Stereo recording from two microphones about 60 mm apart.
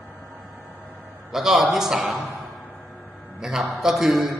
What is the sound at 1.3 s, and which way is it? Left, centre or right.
A man's voice, centre.